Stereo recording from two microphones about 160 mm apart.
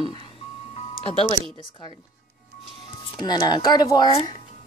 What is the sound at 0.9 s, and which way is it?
Speech, 30° left (ahead or behind).